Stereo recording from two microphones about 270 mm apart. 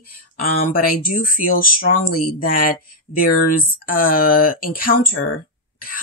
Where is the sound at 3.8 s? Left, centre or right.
Left.